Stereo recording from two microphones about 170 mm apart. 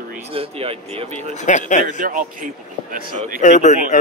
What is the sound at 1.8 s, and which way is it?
Speech, 50° right (ahead or behind).